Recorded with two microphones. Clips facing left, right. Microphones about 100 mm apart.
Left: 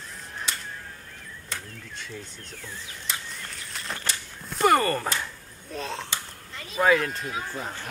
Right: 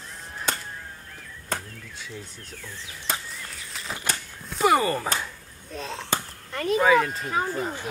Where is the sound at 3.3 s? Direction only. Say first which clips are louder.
Even; centre (ahead or behind).